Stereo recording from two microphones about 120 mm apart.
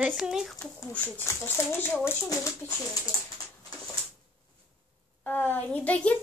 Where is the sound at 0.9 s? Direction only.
15° left (ahead or behind).